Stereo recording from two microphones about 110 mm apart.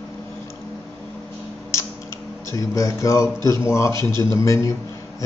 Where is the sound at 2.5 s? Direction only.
30° left (ahead or behind).